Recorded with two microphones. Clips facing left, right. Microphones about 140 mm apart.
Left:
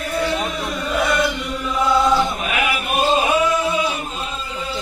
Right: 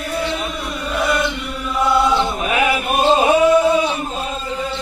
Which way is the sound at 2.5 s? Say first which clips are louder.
Right 4 dB; 35° right (ahead or behind).